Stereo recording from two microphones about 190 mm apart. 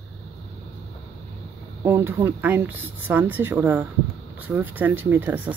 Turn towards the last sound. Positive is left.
turn(degrees=-10)  # may be behind; listen again after turning